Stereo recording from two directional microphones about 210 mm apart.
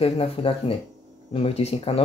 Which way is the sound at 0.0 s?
25° left (ahead or behind).